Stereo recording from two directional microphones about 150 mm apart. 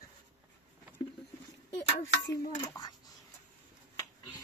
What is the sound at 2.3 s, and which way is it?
Speech, 25° left (ahead or behind).